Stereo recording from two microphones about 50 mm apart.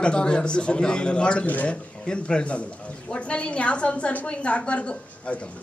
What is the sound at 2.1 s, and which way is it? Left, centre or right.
A man's voice, centre.